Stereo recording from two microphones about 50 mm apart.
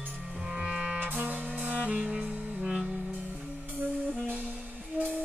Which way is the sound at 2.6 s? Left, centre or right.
Centre.